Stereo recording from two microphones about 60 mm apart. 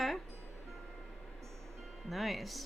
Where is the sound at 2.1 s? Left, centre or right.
Centre.